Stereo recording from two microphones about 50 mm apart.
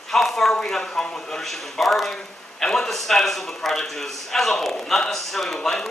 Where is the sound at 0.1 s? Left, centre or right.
Centre.